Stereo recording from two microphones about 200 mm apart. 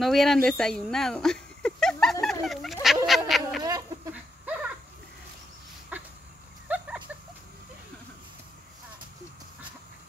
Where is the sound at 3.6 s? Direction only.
20° right (ahead or behind).